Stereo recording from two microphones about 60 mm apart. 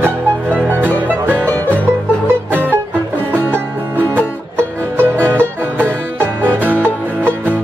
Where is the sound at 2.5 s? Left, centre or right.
Right.